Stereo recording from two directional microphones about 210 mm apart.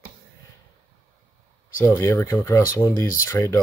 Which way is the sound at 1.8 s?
10° left (ahead or behind).